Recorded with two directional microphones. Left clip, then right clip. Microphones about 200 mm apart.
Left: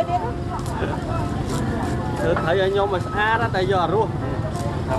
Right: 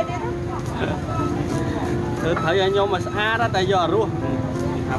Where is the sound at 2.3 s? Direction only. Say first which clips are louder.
Even; 15° right (ahead or behind).